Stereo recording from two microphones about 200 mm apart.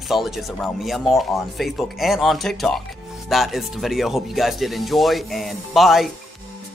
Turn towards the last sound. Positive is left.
turn(degrees=0)  # may be behind; listen again after turning